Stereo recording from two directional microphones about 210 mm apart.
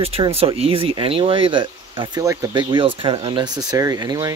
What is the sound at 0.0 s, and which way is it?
Speech, 25° right (ahead or behind).